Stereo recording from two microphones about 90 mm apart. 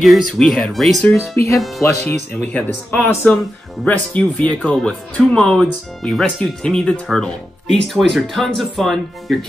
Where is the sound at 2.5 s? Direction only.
20° left (ahead or behind).